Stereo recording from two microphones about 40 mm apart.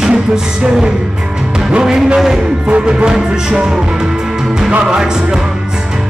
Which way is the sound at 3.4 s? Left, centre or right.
Centre.